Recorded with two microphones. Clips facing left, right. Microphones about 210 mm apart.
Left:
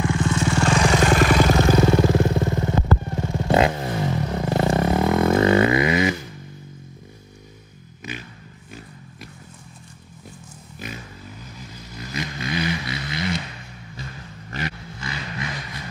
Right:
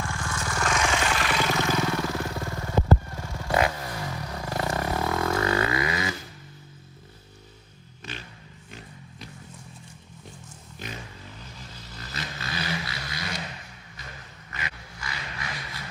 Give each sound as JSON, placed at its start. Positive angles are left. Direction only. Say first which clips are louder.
{"t": 0.0, "sound": "vehicle", "louder": "left 11 dB", "side_deg": 20}
{"t": 2.0, "sound": "motorcycle", "louder": "left 11 dB", "side_deg": 25}
{"t": 11.5, "sound": "vehicle", "louder": "left 5 dB", "side_deg": 10}
{"t": 14.5, "sound": "vehicle", "louder": "left 9 dB", "side_deg": 30}